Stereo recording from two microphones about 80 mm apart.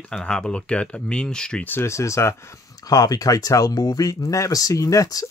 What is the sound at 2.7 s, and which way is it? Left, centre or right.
Speech, left.